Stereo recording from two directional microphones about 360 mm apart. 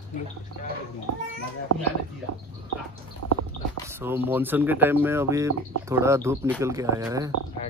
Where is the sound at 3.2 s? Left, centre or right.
Right.